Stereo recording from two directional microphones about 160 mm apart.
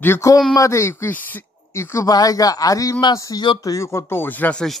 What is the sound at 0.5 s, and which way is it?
Speech, 20° left (ahead or behind).